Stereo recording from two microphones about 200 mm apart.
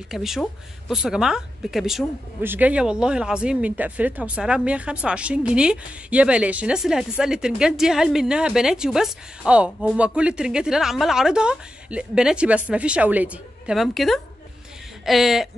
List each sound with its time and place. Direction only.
0.1 s speech: centre (ahead or behind)